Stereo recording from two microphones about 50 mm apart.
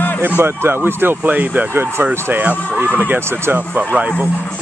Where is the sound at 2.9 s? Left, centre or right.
Right.